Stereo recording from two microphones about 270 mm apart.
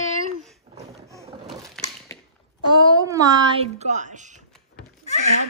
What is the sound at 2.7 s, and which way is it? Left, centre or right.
Speech, centre.